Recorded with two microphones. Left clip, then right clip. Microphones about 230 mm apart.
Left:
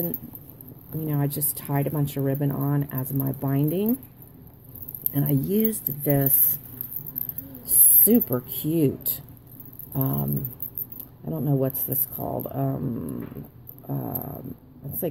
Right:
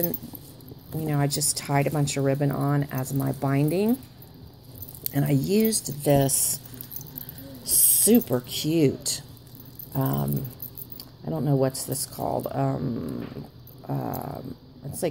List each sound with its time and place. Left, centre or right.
1.0 s speech: centre
5.0 s speech: centre
8.0 s speech: centre